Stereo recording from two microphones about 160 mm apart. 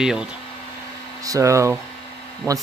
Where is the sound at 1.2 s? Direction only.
20° right (ahead or behind).